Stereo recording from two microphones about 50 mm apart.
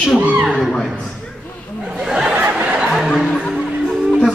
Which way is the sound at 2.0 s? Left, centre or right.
Centre.